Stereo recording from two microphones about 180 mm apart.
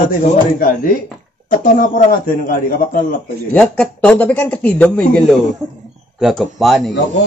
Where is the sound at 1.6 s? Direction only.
50° left (ahead or behind).